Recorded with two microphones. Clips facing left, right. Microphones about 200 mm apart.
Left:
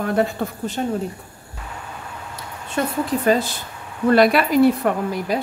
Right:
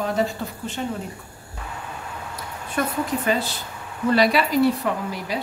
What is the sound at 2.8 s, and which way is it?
Speech, 25° left (ahead or behind).